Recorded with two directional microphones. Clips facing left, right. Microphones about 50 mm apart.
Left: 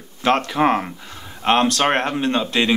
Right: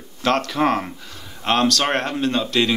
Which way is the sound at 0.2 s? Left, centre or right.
Left.